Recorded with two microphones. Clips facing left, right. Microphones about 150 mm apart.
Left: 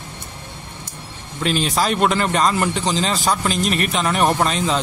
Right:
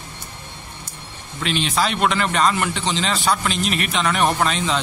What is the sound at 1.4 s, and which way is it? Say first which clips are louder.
A man's voice: left 2 dB; 40° left (ahead or behind).